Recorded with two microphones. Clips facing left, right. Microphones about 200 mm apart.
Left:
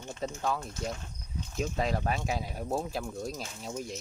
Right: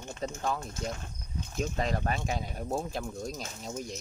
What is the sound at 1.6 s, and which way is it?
Speech, 5° left (ahead or behind).